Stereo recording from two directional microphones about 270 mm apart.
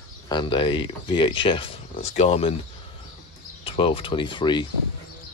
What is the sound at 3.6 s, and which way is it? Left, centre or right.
Speech, centre.